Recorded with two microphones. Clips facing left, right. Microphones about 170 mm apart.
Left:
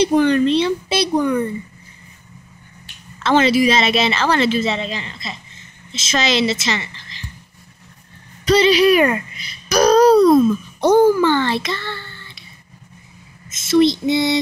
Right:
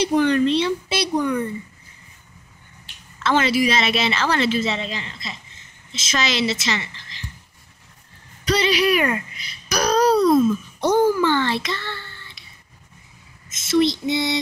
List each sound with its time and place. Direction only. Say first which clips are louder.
0.0 s a woman's voice: left 3 dB; 30° left (ahead or behind)
1.1 s a woman's voice: left 3 dB; 40° left (ahead or behind)
3.3 s a woman's voice: left 5 dB; 25° left (ahead or behind)
8.5 s a woman's voice: left 6 dB; 30° left (ahead or behind)
10.2 s a sound: left 4 dB; 50° left (ahead or behind)
11.4 s a woman's voice: left 3 dB; 25° left (ahead or behind)
13.7 s a woman's voice: left 4 dB; 30° left (ahead or behind)